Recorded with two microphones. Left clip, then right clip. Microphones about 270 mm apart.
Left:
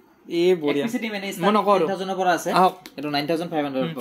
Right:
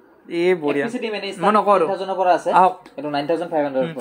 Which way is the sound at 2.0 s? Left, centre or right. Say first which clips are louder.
Right 4 dB; left.